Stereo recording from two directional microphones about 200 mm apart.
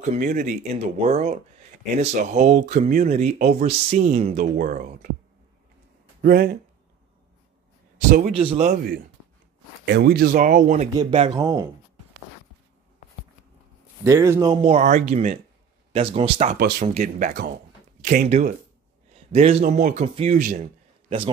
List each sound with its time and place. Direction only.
0.0 s speech: 40° right (ahead or behind)
6.2 s speech: 50° right (ahead or behind)
8.1 s speech: 30° right (ahead or behind)
9.8 s speech: 55° right (ahead or behind); by 10.9 s 40° right (ahead or behind)
11.0 s speech: 25° right (ahead or behind)
14.0 s speech: 15° right (ahead or behind); by 18.5 s 35° right (ahead or behind)
19.1 s a sound: 30° right (ahead or behind)
19.6 s a man's voice: 40° right (ahead or behind)